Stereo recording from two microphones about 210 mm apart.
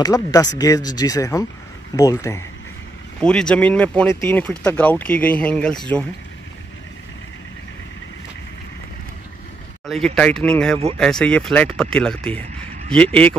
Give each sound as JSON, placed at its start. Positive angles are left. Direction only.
{"t": 0.0, "sound": "speech", "side_deg": 15}
{"t": 3.2, "sound": "speech", "side_deg": 5}
{"t": 9.8, "sound": "speech", "side_deg": 0}